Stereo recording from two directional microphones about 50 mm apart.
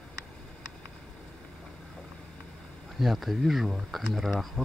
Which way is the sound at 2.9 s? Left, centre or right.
Centre.